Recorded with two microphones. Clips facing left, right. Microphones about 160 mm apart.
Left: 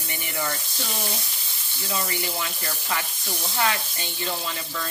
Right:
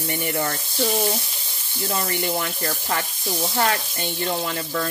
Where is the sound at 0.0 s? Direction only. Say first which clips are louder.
Right 9 dB; 50° right (ahead or behind).